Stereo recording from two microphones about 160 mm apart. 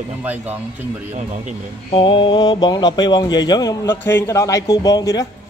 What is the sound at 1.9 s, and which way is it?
A man's voice, 30° left (ahead or behind).